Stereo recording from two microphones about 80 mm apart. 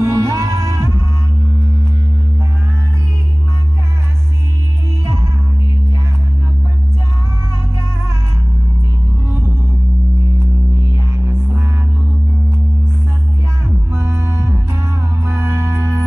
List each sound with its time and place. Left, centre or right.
0.0 s music: right
5.0 s music: right
13.9 s music: right